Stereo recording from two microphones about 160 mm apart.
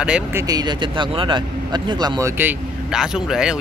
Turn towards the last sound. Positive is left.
turn(degrees=-5)  # may be behind; listen again after turning